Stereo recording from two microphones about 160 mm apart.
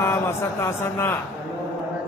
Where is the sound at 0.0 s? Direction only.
15° left (ahead or behind).